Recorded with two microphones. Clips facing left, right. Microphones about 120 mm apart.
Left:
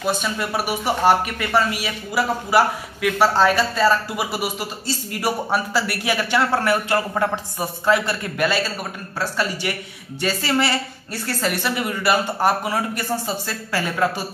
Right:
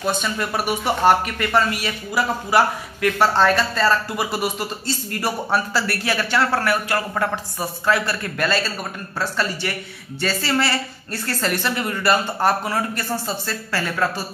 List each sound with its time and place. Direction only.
0.0 s speech: 5° left (ahead or behind)